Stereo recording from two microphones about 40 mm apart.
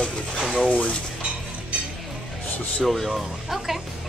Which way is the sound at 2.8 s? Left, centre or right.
Centre.